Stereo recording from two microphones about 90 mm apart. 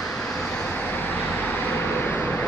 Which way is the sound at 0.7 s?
20° left (ahead or behind).